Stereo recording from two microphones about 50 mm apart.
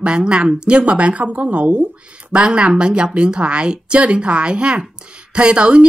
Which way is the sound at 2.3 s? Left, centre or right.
Centre.